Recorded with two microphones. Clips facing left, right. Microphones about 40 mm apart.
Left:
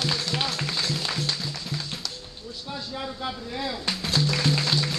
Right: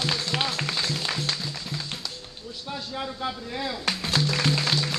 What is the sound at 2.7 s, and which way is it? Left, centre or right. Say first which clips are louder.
Speech: right 1 dB; centre.